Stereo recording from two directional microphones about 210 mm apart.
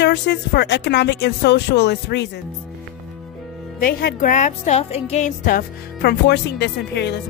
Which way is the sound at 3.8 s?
45° left (ahead or behind).